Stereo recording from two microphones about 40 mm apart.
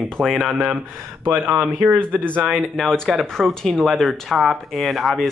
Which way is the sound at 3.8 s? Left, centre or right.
Centre.